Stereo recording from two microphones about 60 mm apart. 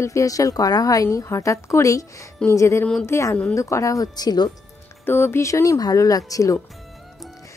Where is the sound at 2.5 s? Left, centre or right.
Left.